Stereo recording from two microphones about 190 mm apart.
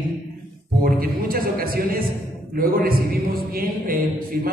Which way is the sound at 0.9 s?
50° right (ahead or behind).